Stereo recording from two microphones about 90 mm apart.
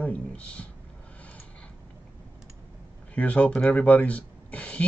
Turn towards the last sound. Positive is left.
turn(degrees=15)  # may be behind; listen again after turning